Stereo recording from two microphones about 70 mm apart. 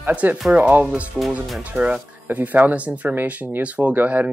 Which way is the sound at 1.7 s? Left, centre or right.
Right.